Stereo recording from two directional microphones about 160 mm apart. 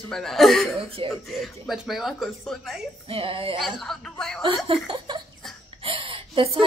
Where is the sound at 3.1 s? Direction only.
35° right (ahead or behind).